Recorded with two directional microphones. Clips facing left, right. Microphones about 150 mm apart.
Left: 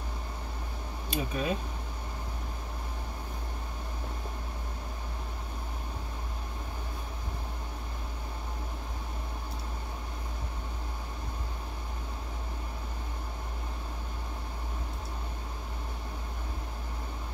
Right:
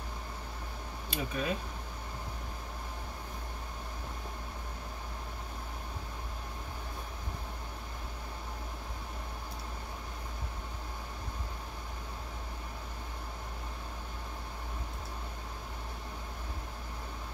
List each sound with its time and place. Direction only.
1.1 s speech: 20° left (ahead or behind)